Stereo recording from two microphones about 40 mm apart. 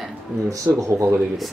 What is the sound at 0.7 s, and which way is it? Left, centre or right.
Speech, right.